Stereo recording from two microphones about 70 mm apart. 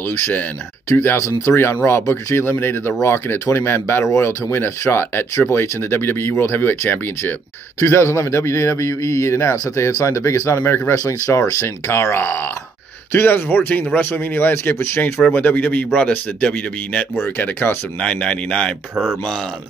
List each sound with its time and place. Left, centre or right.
0.8 s a man's voice: left; by 17.0 s centre
17.2 s a man's voice: left
18.0 s speech: centre